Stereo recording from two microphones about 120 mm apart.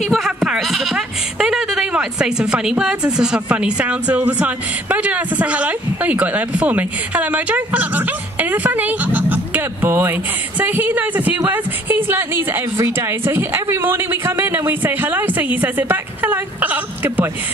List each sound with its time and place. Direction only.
0.0 s a woman's voice: centre (ahead or behind)